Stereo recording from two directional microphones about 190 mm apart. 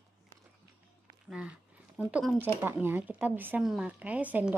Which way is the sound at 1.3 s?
5° right (ahead or behind).